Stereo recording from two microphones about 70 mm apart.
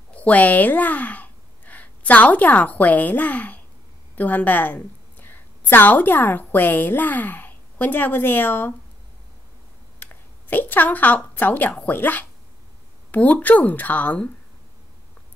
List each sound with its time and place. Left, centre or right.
0.1 s a woman's voice: left
10.5 s speech: left